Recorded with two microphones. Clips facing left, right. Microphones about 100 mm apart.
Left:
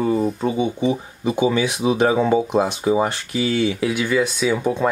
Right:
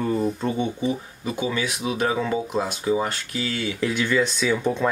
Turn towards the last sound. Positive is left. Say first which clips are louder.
# left 3 dB
turn(degrees=10)  # may be behind; listen again after turning